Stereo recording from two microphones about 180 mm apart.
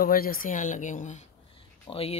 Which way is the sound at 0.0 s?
55° left (ahead or behind).